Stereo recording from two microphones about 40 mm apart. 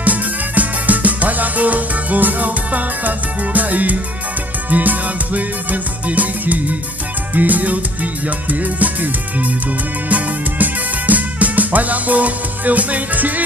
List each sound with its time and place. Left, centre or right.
0.0 s music: right